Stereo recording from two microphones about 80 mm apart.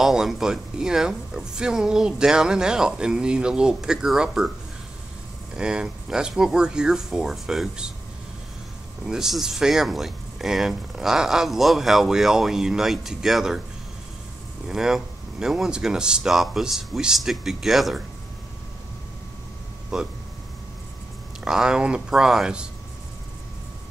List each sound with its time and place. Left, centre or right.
0.0 s speech: centre
5.6 s speech: centre
9.0 s speech: centre
14.7 s speech: centre
19.9 s speech: centre
21.5 s speech: centre